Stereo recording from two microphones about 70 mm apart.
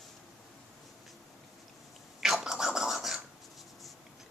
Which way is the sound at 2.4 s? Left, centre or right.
Centre.